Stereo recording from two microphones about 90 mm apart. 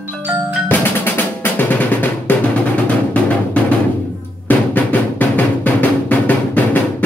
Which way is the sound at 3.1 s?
15° left (ahead or behind).